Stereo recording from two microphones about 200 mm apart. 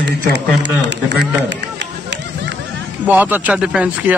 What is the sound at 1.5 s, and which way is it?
Run, 60° right (ahead or behind).